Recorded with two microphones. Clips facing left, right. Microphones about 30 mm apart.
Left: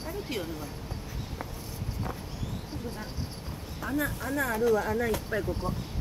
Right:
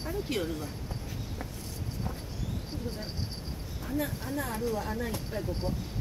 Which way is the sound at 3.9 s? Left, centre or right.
Left.